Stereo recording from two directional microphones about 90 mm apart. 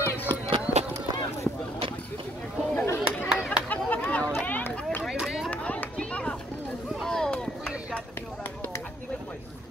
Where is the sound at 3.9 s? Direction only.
15° left (ahead or behind).